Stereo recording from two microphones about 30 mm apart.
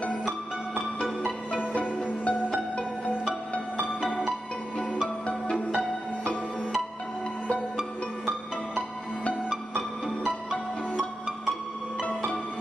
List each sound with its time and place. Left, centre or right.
1.6 s music: left
8.7 s music: left